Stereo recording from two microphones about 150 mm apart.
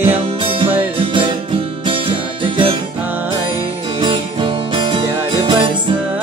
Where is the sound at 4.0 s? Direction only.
35° right (ahead or behind).